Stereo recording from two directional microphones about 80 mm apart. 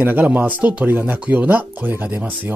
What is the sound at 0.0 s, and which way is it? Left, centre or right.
Speech, right.